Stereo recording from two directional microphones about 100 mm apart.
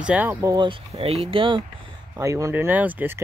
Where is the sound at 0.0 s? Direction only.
15° right (ahead or behind).